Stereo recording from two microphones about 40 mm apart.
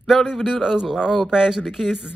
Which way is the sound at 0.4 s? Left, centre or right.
Centre.